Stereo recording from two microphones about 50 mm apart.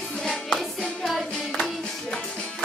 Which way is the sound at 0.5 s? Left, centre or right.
Centre.